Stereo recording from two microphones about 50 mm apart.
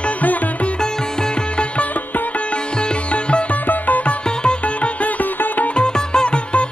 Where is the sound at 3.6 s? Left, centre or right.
Left.